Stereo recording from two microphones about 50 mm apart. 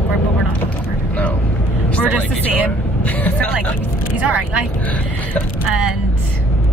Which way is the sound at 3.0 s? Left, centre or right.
Left.